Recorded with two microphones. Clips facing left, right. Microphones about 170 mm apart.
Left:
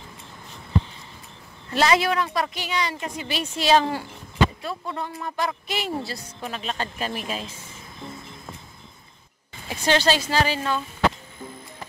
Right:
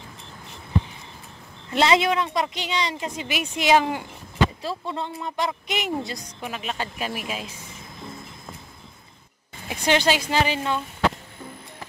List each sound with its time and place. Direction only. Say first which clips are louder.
1.7 s a woman's voice: right 1 dB; 20° right (ahead or behind)
4.6 s speech: right 1 dB; 25° right (ahead or behind)
9.7 s speech: even; 15° right (ahead or behind)